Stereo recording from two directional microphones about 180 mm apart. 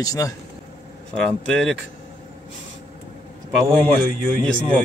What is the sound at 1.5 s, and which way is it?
Speech, 5° left (ahead or behind).